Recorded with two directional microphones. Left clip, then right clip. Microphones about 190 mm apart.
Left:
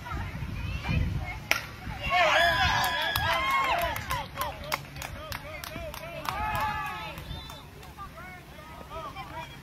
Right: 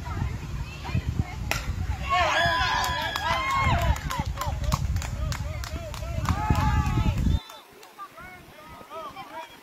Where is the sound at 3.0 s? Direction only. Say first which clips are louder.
Even; 30° left (ahead or behind).